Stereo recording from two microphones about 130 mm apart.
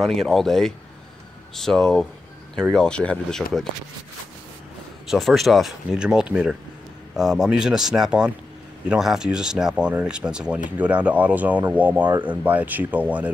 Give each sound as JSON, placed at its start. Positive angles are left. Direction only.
{"t": 0.2, "sound": "speech", "side_deg": 0}
{"t": 5.0, "sound": "speech", "side_deg": 0}